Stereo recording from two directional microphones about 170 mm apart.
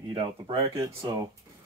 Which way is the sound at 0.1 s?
25° right (ahead or behind).